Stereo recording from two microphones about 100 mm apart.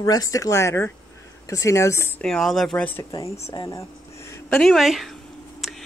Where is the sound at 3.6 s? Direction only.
30° left (ahead or behind).